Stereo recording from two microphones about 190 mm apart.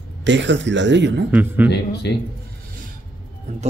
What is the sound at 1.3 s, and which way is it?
Speech, 10° right (ahead or behind).